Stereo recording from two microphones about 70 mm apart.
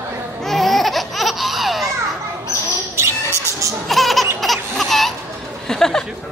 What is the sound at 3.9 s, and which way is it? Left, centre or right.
Laughter, centre.